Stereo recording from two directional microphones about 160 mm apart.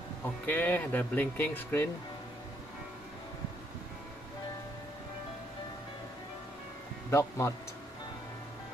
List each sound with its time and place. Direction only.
0.5 s speech: 10° left (ahead or behind)
7.1 s a man's voice: 20° left (ahead or behind)